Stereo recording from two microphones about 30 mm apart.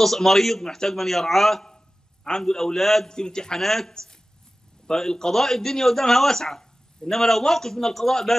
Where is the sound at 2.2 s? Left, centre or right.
Left.